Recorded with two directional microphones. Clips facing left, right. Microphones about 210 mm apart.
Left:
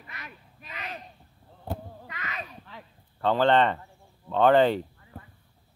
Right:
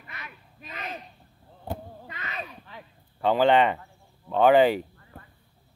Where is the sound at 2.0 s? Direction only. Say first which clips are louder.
Right 1 dB; 30° right (ahead or behind).